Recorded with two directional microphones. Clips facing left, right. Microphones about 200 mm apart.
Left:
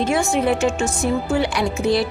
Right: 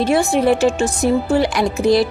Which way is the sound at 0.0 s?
35° right (ahead or behind).